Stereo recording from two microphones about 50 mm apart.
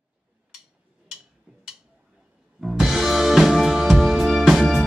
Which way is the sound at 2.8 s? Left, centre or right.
Centre.